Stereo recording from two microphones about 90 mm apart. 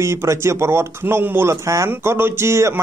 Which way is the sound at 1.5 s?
35° right (ahead or behind).